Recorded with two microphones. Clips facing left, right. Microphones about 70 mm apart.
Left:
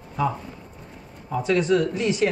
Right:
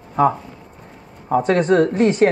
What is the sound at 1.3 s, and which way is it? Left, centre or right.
Speech, right.